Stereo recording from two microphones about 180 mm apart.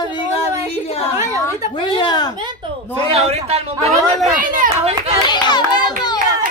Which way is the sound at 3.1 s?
35° right (ahead or behind).